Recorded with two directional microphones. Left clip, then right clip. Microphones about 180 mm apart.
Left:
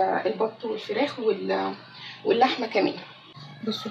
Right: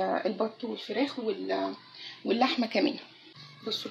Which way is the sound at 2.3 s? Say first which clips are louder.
Left 4 dB; 40° right (ahead or behind).